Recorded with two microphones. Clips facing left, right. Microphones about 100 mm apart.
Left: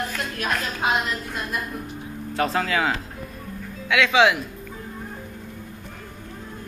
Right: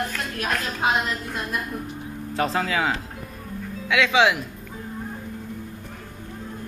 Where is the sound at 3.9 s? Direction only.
20° right (ahead or behind).